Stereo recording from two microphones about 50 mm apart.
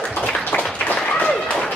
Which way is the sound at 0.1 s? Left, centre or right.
Left.